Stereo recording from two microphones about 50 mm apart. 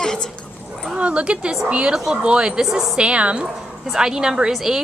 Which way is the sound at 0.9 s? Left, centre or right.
Right.